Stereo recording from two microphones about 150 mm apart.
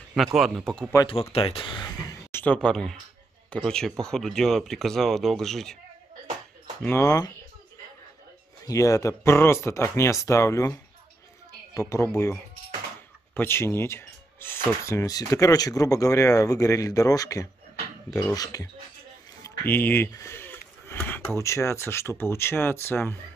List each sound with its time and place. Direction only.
0.1 s speech: centre (ahead or behind)
1.3 s speech: 35° left (ahead or behind)
2.3 s speech: 10° left (ahead or behind)
6.8 s speech: 15° left (ahead or behind)
8.6 s speech: 20° left (ahead or behind)
19.4 s speech: 15° left (ahead or behind)